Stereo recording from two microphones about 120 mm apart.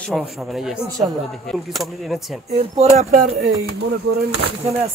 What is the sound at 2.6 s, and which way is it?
Speech, 60° right (ahead or behind).